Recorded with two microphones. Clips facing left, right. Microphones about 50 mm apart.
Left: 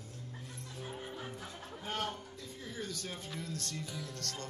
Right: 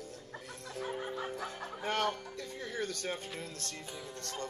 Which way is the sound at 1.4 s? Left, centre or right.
Right.